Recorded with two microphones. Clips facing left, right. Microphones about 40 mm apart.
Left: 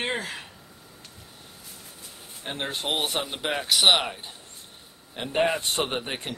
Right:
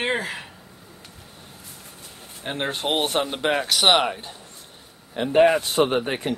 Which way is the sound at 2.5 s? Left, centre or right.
Centre.